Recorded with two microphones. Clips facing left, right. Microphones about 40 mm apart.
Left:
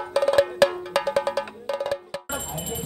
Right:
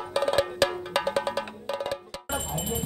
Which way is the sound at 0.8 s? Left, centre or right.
Right.